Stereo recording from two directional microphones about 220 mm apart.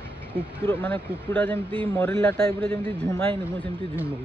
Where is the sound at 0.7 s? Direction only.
10° left (ahead or behind).